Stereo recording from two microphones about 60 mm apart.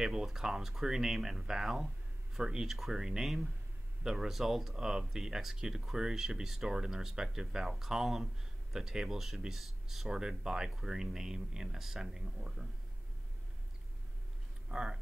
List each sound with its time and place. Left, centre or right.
0.0 s speech: centre
14.7 s speech: centre